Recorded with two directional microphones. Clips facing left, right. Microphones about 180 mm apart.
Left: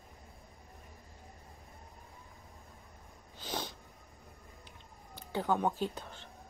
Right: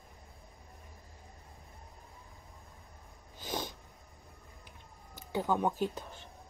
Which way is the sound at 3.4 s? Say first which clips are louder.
Right 2 dB; 15° right (ahead or behind).